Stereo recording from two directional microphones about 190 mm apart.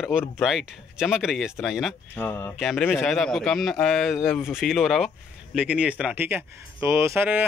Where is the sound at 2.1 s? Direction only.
10° left (ahead or behind).